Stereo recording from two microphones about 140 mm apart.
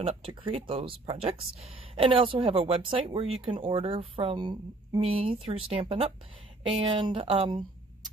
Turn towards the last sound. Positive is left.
turn(degrees=-40)  # may be behind; listen again after turning